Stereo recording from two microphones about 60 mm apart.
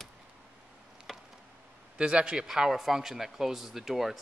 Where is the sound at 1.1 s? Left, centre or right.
Centre.